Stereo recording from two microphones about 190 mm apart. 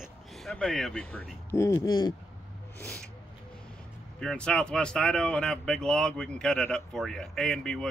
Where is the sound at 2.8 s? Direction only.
5° left (ahead or behind).